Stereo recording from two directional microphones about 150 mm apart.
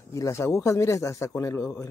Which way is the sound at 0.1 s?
20° left (ahead or behind).